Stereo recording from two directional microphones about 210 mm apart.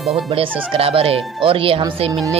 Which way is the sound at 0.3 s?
30° right (ahead or behind).